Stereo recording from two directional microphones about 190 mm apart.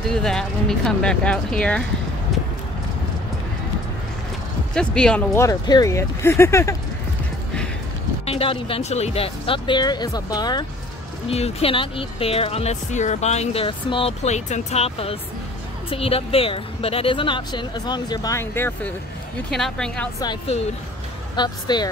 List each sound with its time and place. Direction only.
0.1 s speech: 5° left (ahead or behind)
4.7 s speech: 5° left (ahead or behind)
8.3 s speech: 30° left (ahead or behind)
11.2 s speech: 30° left (ahead or behind); by 20.1 s 5° left (ahead or behind)
21.4 s speech: 20° left (ahead or behind)